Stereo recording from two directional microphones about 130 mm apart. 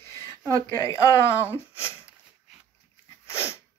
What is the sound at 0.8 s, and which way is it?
Speech, 25° left (ahead or behind).